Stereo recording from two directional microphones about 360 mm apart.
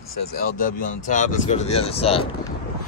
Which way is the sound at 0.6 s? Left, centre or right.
Left.